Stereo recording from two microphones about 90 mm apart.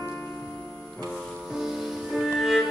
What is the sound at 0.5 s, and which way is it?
Music, centre (ahead or behind).